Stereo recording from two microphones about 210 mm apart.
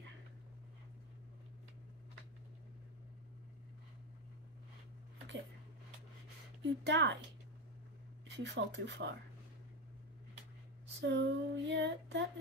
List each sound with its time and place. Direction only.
6.6 s female singing: 60° right (ahead or behind)
8.5 s female singing: 60° right (ahead or behind)
11.0 s female singing: 55° right (ahead or behind)